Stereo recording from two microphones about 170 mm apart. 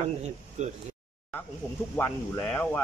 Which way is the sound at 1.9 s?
15° left (ahead or behind).